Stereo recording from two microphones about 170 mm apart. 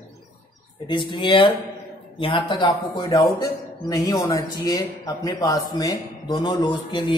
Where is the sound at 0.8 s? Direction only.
30° left (ahead or behind).